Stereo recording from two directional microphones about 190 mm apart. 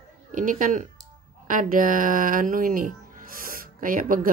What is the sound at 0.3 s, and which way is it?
Speech, 45° right (ahead or behind).